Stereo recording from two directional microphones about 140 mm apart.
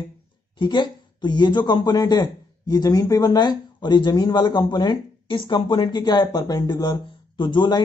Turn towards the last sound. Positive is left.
turn(degrees=35)  # may be behind; listen again after turning